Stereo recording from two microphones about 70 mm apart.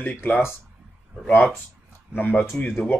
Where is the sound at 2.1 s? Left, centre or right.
Left.